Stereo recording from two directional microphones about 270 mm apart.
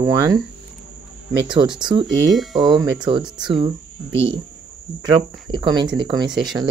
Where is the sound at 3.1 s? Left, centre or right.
Centre.